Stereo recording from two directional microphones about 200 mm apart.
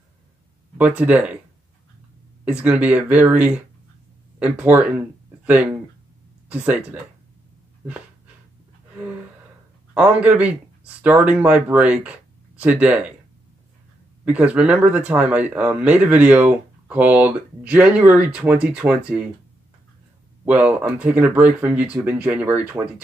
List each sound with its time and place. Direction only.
0.7 s speech: 5° right (ahead or behind)
2.4 s speech: 5° right (ahead or behind)
10.2 s speech: 5° right (ahead or behind)
14.2 s speech: 5° right (ahead or behind)
20.4 s speech: 5° right (ahead or behind)